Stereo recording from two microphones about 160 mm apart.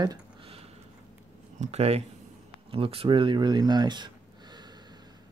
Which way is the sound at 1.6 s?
40° right (ahead or behind).